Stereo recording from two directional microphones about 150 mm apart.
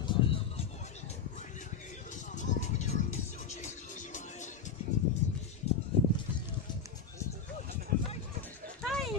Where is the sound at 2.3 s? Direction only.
50° left (ahead or behind).